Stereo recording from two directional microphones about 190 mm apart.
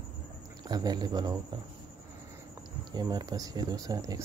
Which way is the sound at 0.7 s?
20° right (ahead or behind).